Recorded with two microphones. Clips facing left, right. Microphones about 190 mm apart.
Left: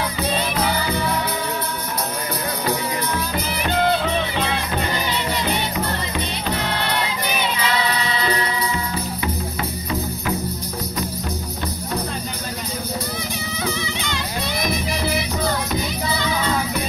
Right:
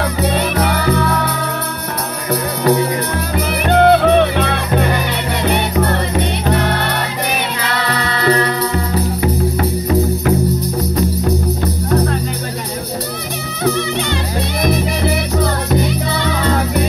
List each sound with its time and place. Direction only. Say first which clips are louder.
0.0 s music: right 6 dB; 65° right (ahead or behind)
3.3 s music: right 10 dB; 65° right (ahead or behind)
8.7 s music: right 8 dB; 45° right (ahead or behind)
11.9 s music: right 11 dB; 65° right (ahead or behind)
13.7 s music: right 12 dB; 60° right (ahead or behind)